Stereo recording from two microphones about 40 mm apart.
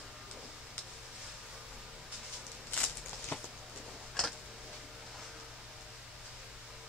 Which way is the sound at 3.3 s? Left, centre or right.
Left.